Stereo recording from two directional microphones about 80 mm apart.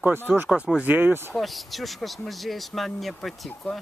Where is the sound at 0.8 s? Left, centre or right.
Right.